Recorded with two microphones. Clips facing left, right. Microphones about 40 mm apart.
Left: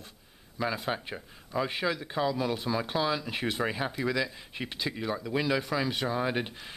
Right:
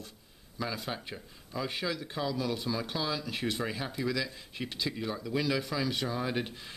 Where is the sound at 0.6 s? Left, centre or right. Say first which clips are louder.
Left 5 dB; left.